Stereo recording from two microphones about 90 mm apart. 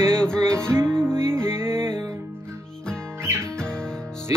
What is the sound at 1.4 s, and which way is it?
Music, 30° right (ahead or behind).